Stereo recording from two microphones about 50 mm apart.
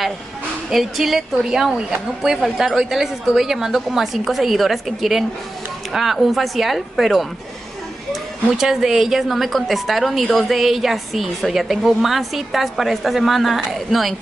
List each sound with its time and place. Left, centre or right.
0.7 s a woman's voice: centre